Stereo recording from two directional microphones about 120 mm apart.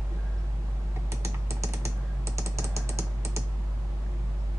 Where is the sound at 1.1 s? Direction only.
25° right (ahead or behind).